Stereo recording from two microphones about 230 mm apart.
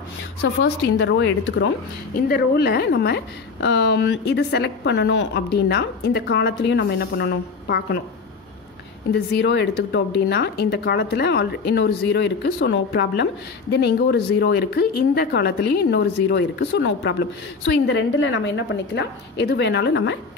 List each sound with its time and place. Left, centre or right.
0.4 s speech: left
2.1 s speech: left
9.1 s speech: left